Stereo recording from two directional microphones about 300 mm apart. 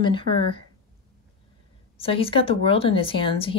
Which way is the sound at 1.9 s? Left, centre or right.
Centre.